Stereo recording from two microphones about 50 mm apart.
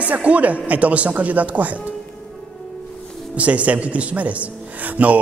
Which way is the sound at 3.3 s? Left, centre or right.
Right.